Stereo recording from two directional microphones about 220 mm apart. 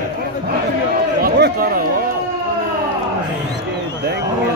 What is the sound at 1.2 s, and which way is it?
Chatter, 45° right (ahead or behind).